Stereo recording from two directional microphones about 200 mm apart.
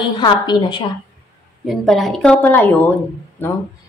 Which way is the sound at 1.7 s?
Centre (ahead or behind).